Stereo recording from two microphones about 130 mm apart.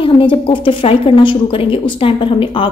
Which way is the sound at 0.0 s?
40° left (ahead or behind).